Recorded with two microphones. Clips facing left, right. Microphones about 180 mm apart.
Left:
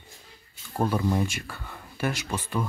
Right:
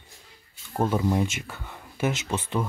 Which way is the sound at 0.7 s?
20° right (ahead or behind).